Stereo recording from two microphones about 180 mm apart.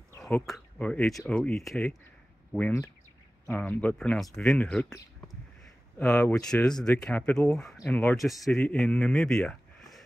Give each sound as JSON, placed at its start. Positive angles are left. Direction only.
{"t": 0.2, "sound": "speech", "side_deg": 5}
{"t": 5.9, "sound": "speech", "side_deg": 10}